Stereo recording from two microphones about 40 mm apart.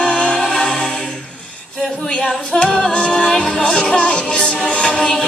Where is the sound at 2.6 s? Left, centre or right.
Centre.